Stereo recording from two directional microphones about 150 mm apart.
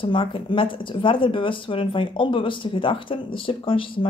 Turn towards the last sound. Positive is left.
turn(degrees=35)  # may be behind; listen again after turning